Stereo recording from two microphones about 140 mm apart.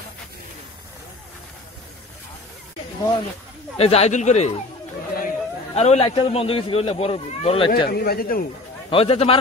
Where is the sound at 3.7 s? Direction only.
45° left (ahead or behind).